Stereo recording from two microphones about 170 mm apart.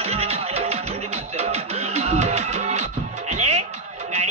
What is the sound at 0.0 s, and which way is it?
Music, 35° right (ahead or behind).